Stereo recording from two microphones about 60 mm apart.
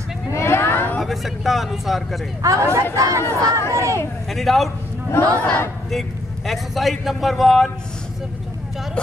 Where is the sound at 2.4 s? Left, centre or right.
Right.